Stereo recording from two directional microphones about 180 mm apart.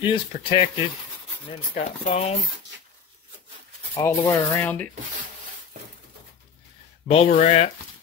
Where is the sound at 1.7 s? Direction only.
40° left (ahead or behind).